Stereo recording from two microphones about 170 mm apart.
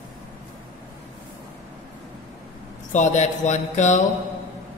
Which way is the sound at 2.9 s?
45° left (ahead or behind).